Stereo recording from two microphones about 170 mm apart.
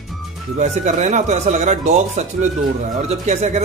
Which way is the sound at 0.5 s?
45° right (ahead or behind).